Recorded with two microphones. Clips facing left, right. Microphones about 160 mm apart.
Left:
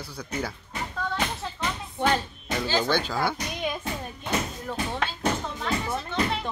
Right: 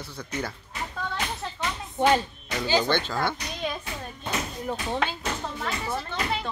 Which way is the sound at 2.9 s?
10° left (ahead or behind).